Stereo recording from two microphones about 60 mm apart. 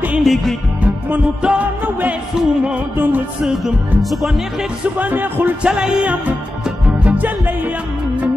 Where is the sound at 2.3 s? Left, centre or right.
Centre.